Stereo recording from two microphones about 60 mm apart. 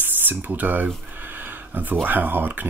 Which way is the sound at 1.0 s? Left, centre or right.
Right.